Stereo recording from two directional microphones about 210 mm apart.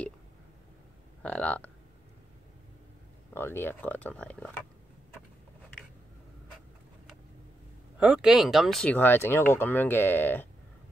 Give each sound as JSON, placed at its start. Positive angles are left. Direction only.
{"t": 1.2, "sound": "speech", "side_deg": 5}
{"t": 3.3, "sound": "speech", "side_deg": 10}
{"t": 8.0, "sound": "speech", "side_deg": -5}